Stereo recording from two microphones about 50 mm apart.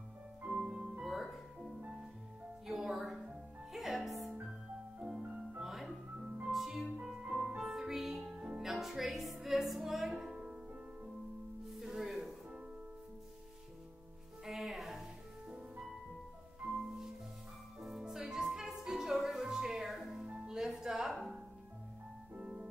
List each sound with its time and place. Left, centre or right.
0.6 s music: centre
1.0 s music: centre
5.6 s music: centre
8.3 s music: centre
8.6 s music: centre
10.3 s music: centre
11.6 s music: centre
14.4 s music: centre
17.7 s music: centre
22.4 s music: centre